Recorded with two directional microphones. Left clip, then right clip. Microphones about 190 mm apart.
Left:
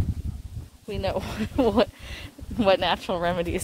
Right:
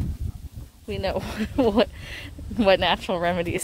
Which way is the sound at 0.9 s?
10° right (ahead or behind).